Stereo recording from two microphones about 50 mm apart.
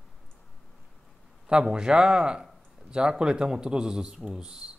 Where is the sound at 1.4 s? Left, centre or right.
Centre.